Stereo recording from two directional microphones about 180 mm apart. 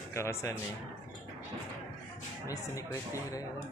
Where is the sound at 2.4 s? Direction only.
15° left (ahead or behind).